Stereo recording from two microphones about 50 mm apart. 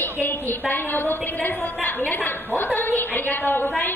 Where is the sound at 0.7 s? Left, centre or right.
Left.